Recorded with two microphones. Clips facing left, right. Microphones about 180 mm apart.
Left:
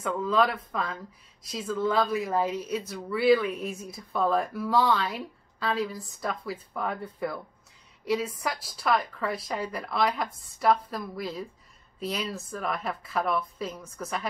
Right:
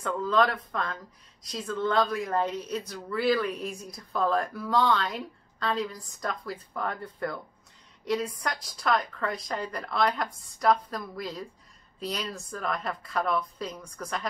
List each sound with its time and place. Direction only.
0.0 s a woman's voice: centre (ahead or behind)